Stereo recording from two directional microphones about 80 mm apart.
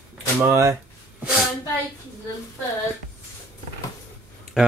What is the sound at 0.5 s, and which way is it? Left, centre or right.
Speech, right.